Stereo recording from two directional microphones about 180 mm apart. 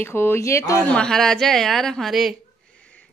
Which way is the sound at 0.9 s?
5° left (ahead or behind).